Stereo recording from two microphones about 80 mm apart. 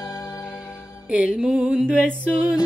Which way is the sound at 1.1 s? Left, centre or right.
Centre.